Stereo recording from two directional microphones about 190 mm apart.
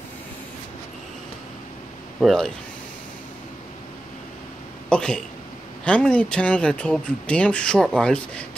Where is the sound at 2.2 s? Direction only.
Centre (ahead or behind).